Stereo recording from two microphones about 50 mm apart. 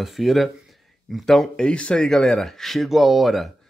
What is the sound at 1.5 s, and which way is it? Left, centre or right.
Speech, left.